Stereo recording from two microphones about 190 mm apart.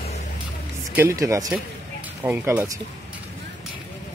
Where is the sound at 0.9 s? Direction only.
10° right (ahead or behind).